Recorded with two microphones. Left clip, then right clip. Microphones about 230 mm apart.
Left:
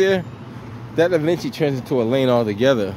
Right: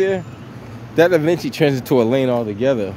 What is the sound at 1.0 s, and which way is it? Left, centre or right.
Speech, centre.